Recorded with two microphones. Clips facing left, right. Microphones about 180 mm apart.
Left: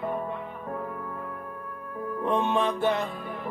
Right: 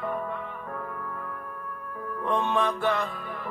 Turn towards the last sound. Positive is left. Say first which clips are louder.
# left 1 dB
turn(degrees=25)  # may be behind; listen again after turning